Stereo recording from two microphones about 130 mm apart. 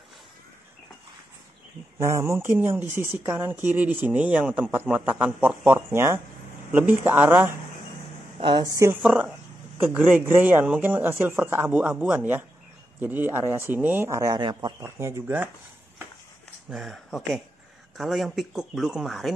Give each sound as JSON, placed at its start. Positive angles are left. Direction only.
{"t": 2.0, "sound": "speech", "side_deg": -20}
{"t": 8.4, "sound": "speech", "side_deg": -40}
{"t": 9.0, "sound": "speech", "side_deg": -10}
{"t": 14.4, "sound": "speech", "side_deg": -35}
{"t": 14.8, "sound": "speech", "side_deg": -20}
{"t": 16.6, "sound": "speech", "side_deg": 0}